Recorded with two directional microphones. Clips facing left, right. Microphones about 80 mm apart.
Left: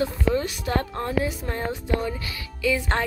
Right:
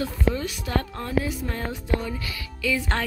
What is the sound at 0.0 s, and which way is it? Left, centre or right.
A woman's voice, left.